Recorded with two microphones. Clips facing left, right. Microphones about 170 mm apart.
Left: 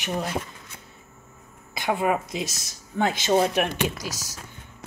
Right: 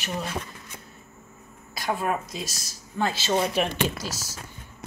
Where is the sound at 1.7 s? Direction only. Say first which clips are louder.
Left 3 dB; 20° left (ahead or behind).